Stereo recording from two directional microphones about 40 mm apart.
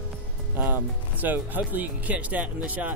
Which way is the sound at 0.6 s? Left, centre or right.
Right.